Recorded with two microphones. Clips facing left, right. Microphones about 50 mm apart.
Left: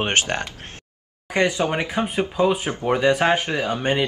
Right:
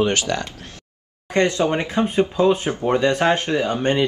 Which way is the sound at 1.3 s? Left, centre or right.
Centre.